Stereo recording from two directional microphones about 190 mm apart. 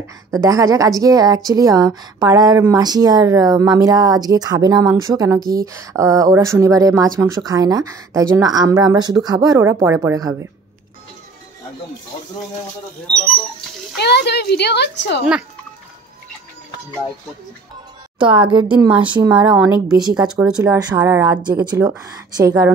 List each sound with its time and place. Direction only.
0.0 s a woman's voice: 15° right (ahead or behind)
13.9 s speech: 60° left (ahead or behind)
18.3 s a woman's voice: 25° right (ahead or behind)
20.2 s speech: 5° right (ahead or behind)